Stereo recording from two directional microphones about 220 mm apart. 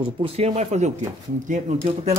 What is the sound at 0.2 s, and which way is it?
Speech, 30° right (ahead or behind).